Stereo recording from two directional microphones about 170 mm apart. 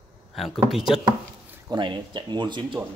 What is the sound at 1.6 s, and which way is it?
Speech, 30° right (ahead or behind).